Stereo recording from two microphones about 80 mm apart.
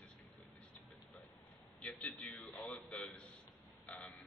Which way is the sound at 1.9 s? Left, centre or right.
Centre.